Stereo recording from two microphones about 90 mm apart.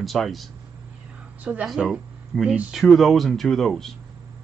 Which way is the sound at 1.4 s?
15° right (ahead or behind).